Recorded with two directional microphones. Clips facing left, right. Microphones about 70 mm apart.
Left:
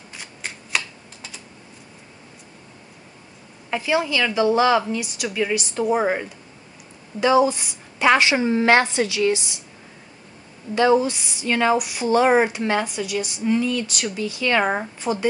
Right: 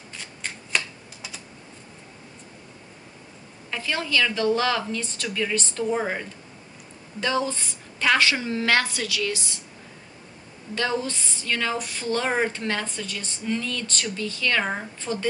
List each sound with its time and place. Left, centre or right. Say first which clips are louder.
0.1 s shuffling cards: left 1 dB; centre
3.8 s a woman's voice: left 3 dB; centre
10.7 s a woman's voice: left 9 dB; centre